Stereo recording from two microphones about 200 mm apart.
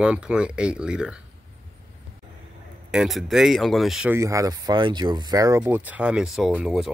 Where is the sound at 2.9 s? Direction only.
Centre (ahead or behind); by 5.6 s 20° right (ahead or behind).